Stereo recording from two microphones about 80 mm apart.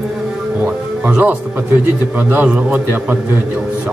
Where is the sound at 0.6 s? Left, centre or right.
Centre.